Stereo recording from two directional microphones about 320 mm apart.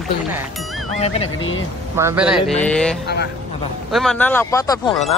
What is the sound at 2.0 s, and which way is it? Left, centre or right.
A man's voice, centre.